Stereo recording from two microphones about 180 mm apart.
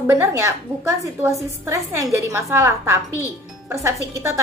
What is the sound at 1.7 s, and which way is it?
A woman's voice, 15° right (ahead or behind).